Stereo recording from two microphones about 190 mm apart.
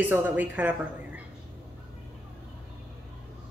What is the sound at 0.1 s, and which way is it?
A woman's voice, 10° right (ahead or behind).